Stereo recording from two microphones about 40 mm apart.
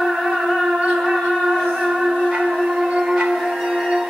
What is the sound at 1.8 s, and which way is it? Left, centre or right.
Music, centre.